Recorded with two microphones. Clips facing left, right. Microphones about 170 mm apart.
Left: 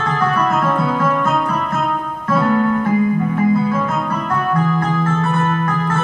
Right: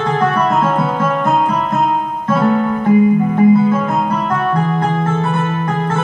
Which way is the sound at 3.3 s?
30° right (ahead or behind).